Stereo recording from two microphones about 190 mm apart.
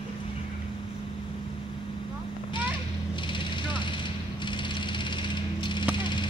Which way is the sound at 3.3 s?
25° left (ahead or behind).